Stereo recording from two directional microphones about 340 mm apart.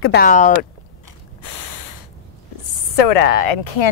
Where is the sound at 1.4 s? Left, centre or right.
Left.